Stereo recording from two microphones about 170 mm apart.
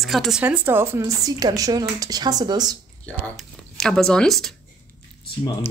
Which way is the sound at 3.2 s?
Centre (ahead or behind).